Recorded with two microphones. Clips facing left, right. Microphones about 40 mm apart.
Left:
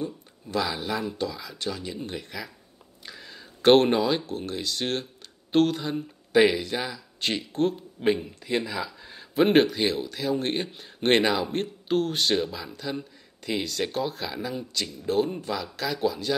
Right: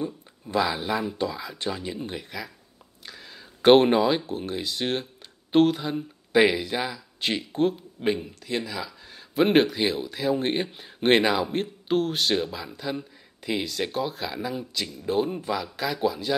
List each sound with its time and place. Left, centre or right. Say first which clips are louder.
0.5 s speech: right 3 dB; centre